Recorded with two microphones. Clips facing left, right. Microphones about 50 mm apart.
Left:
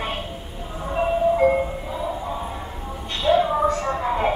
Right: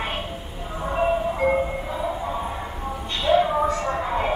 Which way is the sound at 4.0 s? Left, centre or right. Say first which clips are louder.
Left 2 dB; centre.